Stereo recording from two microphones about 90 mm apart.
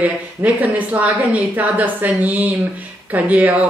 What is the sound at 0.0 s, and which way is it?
Speech, 15° right (ahead or behind).